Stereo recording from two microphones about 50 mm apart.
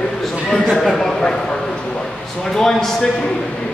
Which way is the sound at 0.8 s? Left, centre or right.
Centre.